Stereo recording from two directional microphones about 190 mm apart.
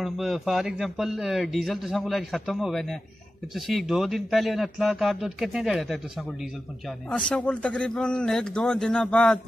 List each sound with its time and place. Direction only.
0.0 s a man's voice: centre (ahead or behind)